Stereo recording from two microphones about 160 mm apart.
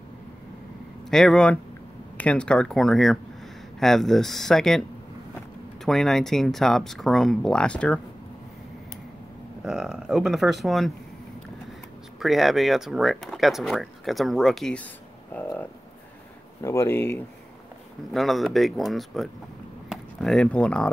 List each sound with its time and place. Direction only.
1.1 s speech: 5° left (ahead or behind)
5.9 s speech: centre (ahead or behind)
9.6 s speech: 5° right (ahead or behind)
12.2 s speech: centre (ahead or behind)
15.3 s a sound: 10° left (ahead or behind)
16.6 s speech: 15° left (ahead or behind)
18.1 s speech: centre (ahead or behind)